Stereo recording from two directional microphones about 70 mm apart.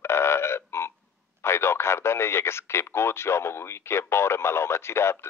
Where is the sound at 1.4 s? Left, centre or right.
Left.